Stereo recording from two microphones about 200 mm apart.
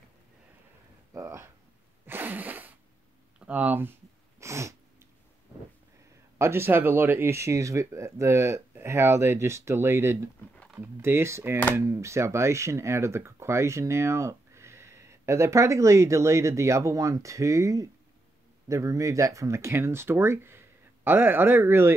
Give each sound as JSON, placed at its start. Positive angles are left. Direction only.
{"t": 1.1, "sound": "a sound", "side_deg": -15}
{"t": 2.0, "sound": "sneeze", "side_deg": -10}
{"t": 3.3, "sound": "speech", "side_deg": -5}
{"t": 4.4, "sound": "sneeze", "side_deg": -15}
{"t": 6.3, "sound": "speech", "side_deg": -10}
{"t": 10.5, "sound": "a sound", "side_deg": 5}
{"t": 10.8, "sound": "speech", "side_deg": -10}